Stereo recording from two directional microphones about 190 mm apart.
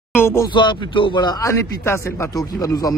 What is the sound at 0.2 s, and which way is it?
Speech, 15° left (ahead or behind).